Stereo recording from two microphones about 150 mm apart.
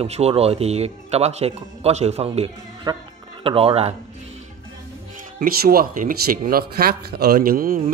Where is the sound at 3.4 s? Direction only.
40° right (ahead or behind).